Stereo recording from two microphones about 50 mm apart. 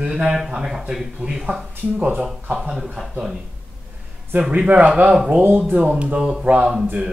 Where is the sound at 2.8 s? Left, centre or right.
Centre.